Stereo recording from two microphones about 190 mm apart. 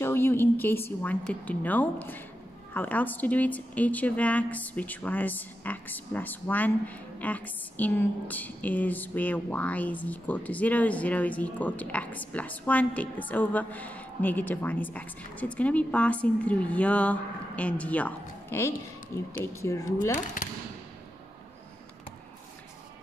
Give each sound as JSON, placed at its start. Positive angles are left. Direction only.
{"t": 0.0, "sound": "a woman's voice", "side_deg": 10}